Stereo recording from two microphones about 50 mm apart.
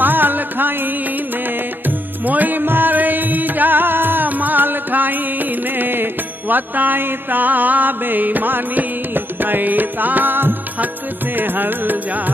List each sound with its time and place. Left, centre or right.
0.0 s music: right
1.9 s music: right
6.5 s mantra: right
11.3 s music: right